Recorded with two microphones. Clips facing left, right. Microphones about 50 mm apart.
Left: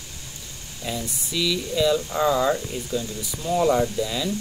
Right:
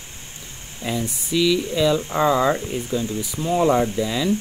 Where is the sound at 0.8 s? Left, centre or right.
Right.